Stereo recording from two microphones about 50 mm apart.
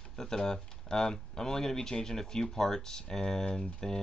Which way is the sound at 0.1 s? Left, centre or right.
Centre.